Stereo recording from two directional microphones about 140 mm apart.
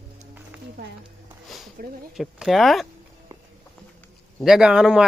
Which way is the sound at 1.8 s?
85° right.